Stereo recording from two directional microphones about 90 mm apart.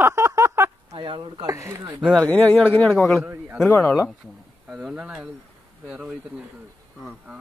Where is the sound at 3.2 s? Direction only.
25° right (ahead or behind).